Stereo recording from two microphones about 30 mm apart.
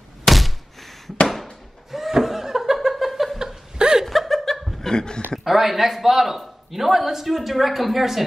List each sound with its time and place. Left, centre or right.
0.2 s thunk: centre
1.3 s laughter: centre
3.7 s chuckle: right
4.0 s chuckle: centre
4.8 s a sound: left
5.4 s speech: centre